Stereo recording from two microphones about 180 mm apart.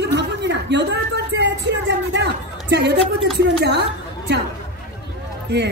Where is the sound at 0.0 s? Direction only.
70° right (ahead or behind).